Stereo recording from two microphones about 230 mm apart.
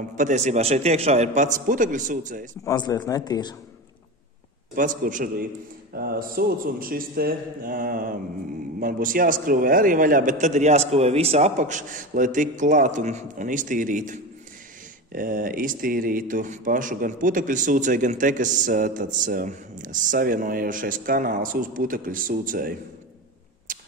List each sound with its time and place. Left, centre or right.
0.1 s speech: right
2.6 s speech: centre
4.7 s speech: right
23.7 s rodents: right